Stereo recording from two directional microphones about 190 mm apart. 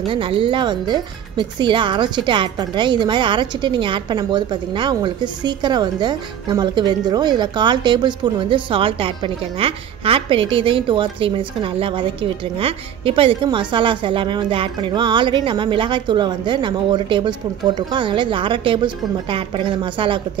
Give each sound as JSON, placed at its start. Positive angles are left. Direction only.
{"t": 0.1, "sound": "speech", "side_deg": -25}